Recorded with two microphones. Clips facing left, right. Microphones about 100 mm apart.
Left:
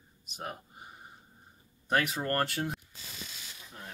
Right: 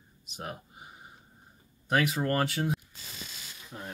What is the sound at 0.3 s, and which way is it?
Speech, centre (ahead or behind).